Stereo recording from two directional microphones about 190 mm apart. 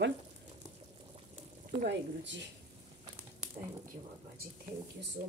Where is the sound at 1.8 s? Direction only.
65° right (ahead or behind).